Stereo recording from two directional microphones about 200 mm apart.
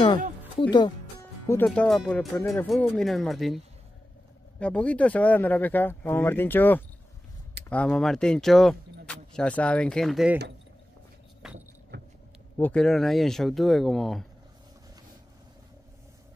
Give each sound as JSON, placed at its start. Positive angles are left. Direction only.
{"t": 0.6, "sound": "speech", "side_deg": 20}
{"t": 1.5, "sound": "speech", "side_deg": 10}
{"t": 11.4, "sound": "vehicle", "side_deg": 0}
{"t": 11.9, "sound": "heart sounds", "side_deg": -60}
{"t": 12.5, "sound": "speech", "side_deg": 5}